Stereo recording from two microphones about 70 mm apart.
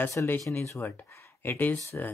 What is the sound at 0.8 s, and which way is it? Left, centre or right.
Speech, left.